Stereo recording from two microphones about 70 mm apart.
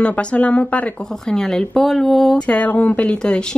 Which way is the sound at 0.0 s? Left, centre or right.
Centre.